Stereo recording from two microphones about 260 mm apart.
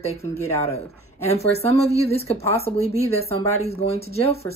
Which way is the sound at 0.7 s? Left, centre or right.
Left.